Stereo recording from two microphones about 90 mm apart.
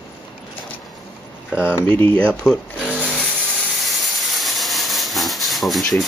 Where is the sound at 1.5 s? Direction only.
20° left (ahead or behind).